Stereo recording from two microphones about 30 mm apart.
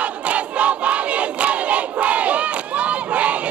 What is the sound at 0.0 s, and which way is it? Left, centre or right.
Crowd, right.